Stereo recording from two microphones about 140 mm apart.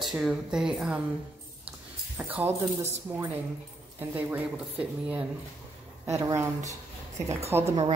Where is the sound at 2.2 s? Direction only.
10° right (ahead or behind).